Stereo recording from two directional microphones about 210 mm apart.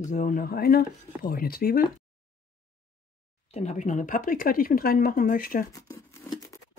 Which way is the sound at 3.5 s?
30° left (ahead or behind).